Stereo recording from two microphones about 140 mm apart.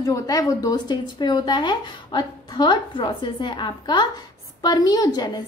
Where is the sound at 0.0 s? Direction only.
25° left (ahead or behind).